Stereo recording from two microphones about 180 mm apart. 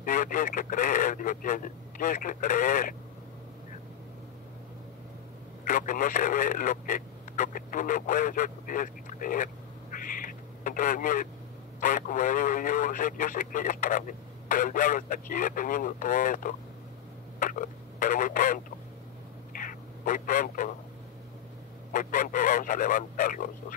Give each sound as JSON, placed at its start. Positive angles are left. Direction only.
{"t": 0.0, "sound": "speech", "side_deg": 50}
{"t": 5.7, "sound": "speech", "side_deg": 50}
{"t": 9.9, "sound": "duck", "side_deg": 50}
{"t": 11.8, "sound": "speech", "side_deg": 50}
{"t": 19.5, "sound": "duck", "side_deg": 50}
{"t": 21.9, "sound": "speech", "side_deg": 50}